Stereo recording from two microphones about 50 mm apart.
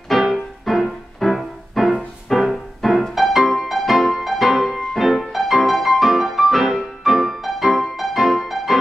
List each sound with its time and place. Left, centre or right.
0.1 s music: centre